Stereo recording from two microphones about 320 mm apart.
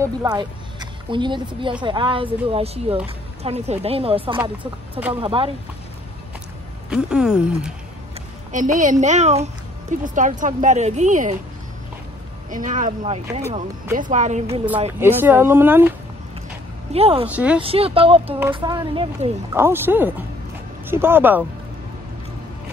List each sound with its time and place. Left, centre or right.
0.0 s speech: centre
6.9 s speech: centre
8.5 s a woman's voice: right
12.4 s a woman's voice: right
15.0 s speech: centre
16.9 s speech: centre
17.3 s speech: centre
17.6 s speech: centre